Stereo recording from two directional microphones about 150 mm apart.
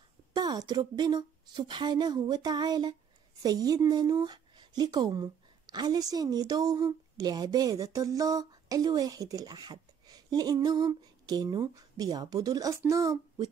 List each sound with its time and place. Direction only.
0.3 s speech: 30° right (ahead or behind)